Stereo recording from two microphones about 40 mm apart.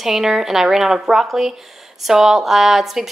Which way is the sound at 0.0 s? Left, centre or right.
Centre.